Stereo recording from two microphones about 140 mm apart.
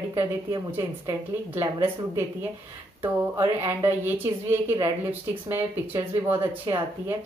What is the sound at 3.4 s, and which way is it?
Speech, 15° right (ahead or behind).